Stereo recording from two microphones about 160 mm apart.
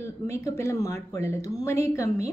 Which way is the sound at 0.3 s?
15° left (ahead or behind).